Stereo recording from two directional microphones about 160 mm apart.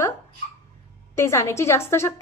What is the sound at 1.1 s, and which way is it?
A woman's voice, 15° left (ahead or behind).